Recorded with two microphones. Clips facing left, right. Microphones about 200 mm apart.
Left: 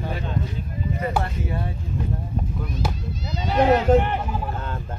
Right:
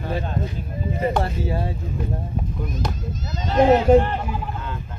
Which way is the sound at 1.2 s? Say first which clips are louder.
Right 3 dB; 30° right (ahead or behind).